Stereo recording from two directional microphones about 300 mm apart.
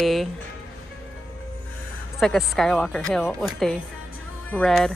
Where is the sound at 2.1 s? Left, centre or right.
Centre.